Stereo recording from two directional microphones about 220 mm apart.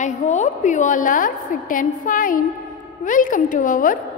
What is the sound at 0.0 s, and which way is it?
A woman's voice, 35° left (ahead or behind).